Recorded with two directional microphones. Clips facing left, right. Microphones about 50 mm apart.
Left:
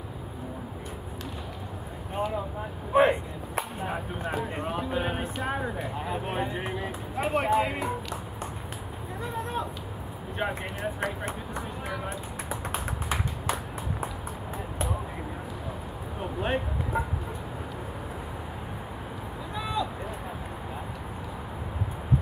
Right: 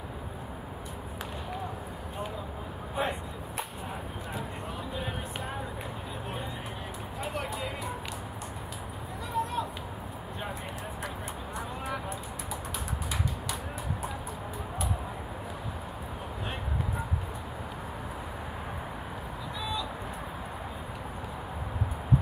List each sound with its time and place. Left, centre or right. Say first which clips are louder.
2.9 s chop: left 11 dB; left
4.6 s a sound: left 7 dB; left
6.0 s speech: left 9 dB; left
9.3 s a sound: right 2 dB; left
10.4 s speech: left 8 dB; left
12.4 s tap: left 5 dB; left